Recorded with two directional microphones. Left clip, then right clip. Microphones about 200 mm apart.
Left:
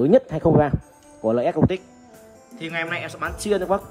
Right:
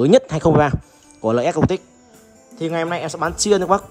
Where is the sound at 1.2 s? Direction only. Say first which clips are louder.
Right 3 dB; 35° left (ahead or behind).